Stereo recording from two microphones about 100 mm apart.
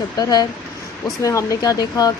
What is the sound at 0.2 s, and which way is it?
Speech, 40° left (ahead or behind).